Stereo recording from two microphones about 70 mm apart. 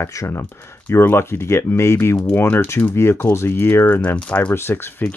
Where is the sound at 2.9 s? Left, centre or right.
Left.